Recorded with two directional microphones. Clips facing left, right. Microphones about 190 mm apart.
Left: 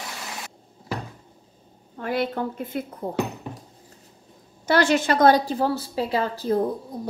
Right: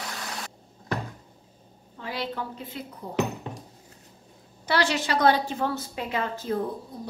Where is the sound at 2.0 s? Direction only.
55° left (ahead or behind).